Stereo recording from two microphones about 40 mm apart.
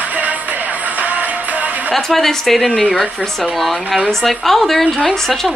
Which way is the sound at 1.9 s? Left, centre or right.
Centre.